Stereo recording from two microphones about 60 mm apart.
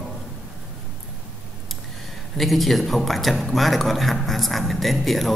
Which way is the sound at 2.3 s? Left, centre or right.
Centre.